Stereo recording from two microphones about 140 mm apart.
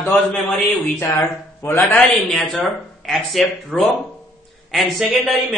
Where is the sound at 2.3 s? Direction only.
Centre (ahead or behind).